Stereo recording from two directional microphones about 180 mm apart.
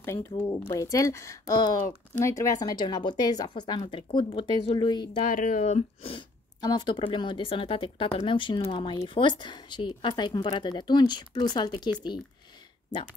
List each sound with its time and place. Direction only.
0.0 s speech: 15° left (ahead or behind)
5.3 s speech: 50° left (ahead or behind); by 12.2 s 25° left (ahead or behind)